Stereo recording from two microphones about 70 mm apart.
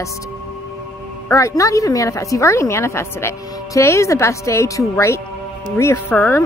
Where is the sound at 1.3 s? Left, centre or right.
Left.